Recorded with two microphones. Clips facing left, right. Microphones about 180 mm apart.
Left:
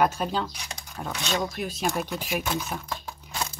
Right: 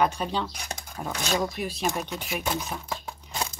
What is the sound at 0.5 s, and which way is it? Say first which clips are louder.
Speech: right 3 dB; 50° right (ahead or behind).